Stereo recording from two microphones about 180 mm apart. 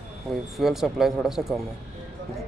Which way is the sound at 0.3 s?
Centre (ahead or behind).